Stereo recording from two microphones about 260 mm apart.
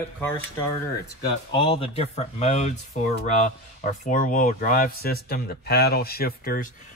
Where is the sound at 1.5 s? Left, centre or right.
Centre.